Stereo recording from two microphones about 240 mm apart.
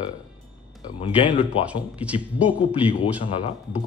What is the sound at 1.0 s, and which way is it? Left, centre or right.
Speech, left.